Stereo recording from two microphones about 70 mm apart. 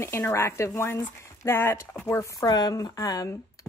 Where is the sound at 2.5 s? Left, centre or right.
Left.